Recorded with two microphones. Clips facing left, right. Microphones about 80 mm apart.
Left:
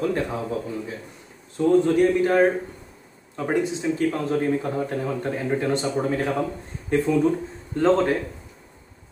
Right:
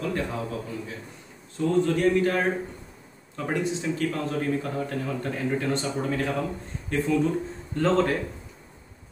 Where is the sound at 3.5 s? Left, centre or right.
Centre.